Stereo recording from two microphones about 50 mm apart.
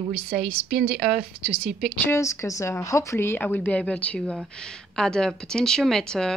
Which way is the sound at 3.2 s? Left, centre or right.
Left.